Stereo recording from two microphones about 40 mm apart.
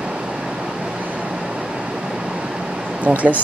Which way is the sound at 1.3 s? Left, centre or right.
Right.